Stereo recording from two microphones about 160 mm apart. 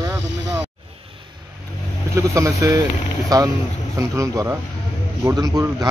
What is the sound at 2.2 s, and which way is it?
Speech, 20° right (ahead or behind).